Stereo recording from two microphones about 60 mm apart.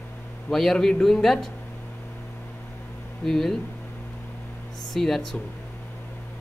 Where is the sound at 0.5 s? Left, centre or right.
Centre.